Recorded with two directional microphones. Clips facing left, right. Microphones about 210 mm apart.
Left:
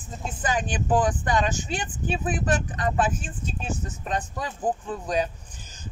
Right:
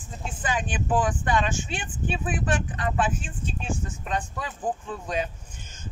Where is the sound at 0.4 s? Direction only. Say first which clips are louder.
Left 2 dB; 40° left (ahead or behind).